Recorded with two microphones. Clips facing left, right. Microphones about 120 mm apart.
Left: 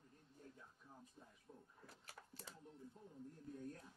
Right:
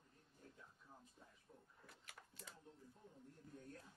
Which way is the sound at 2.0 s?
35° left (ahead or behind).